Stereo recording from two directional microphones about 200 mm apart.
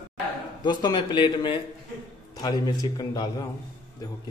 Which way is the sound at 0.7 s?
20° left (ahead or behind).